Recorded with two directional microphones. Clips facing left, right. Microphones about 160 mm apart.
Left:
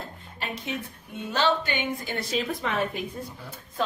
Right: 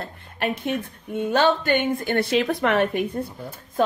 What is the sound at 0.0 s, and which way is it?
A woman's voice, 60° right (ahead or behind).